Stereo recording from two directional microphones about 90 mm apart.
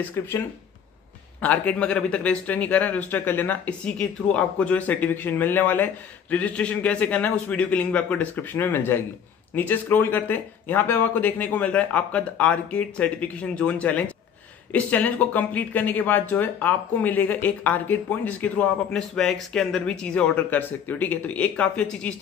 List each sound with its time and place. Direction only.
0.2 s speech: 30° left (ahead or behind)
1.4 s speech: 15° left (ahead or behind)